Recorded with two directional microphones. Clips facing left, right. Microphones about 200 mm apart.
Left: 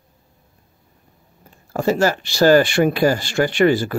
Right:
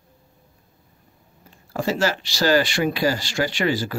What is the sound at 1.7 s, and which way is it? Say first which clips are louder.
Speech: left 5 dB; 45° left (ahead or behind).